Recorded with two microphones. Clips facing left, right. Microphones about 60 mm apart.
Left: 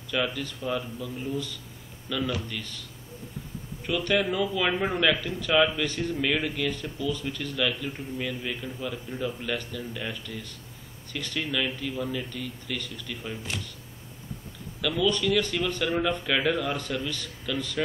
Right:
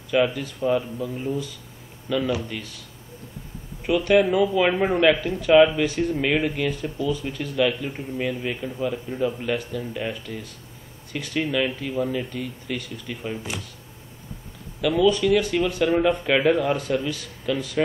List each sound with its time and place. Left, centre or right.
0.1 s speech: centre
3.8 s speech: centre
14.8 s speech: centre